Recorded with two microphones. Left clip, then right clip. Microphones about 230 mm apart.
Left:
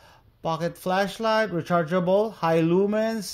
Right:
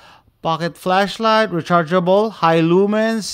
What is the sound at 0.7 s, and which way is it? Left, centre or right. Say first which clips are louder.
Speech: right 8 dB; right.